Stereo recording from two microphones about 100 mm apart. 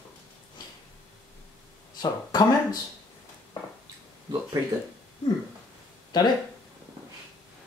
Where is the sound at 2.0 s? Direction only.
45° left (ahead or behind).